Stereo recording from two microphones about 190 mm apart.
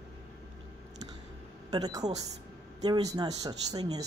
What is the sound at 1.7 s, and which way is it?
Speech, 20° right (ahead or behind).